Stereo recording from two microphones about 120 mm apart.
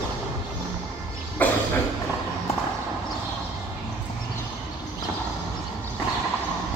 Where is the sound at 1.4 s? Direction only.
15° left (ahead or behind).